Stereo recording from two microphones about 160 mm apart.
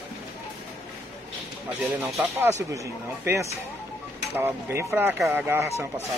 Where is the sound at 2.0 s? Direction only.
20° right (ahead or behind).